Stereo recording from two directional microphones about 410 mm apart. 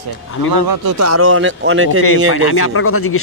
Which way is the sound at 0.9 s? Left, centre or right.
Right.